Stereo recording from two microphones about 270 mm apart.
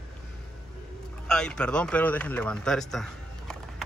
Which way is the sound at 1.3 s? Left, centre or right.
Centre.